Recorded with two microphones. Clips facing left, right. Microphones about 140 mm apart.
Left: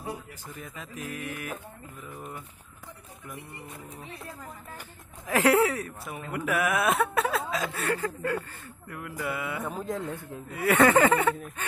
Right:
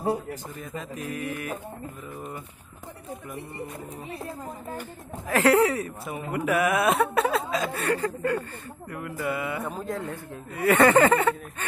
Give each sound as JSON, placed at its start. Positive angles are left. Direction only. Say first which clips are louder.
{"t": 0.6, "sound": "speech", "louder": "right 5 dB", "side_deg": 5}
{"t": 5.3, "sound": "speech", "louder": "right 2 dB", "side_deg": 10}
{"t": 5.7, "sound": "speech", "louder": "right 4 dB", "side_deg": 0}
{"t": 9.6, "sound": "speech", "louder": "right 1 dB", "side_deg": -20}
{"t": 9.8, "sound": "speech", "louder": "right 1 dB", "side_deg": 15}
{"t": 10.5, "sound": "speech", "louder": "right 2 dB", "side_deg": 5}